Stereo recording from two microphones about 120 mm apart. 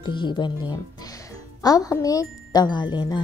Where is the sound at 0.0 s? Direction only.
40° left (ahead or behind).